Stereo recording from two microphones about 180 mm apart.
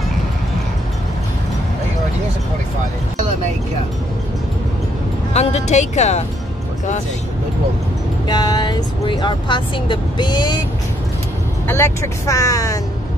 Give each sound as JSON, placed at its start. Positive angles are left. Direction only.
{"t": 5.3, "sound": "speech", "side_deg": 40}
{"t": 8.3, "sound": "speech", "side_deg": 20}
{"t": 11.6, "sound": "speech", "side_deg": 15}